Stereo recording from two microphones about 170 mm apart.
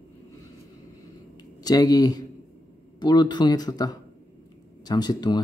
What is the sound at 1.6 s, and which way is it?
Speech, 20° left (ahead or behind).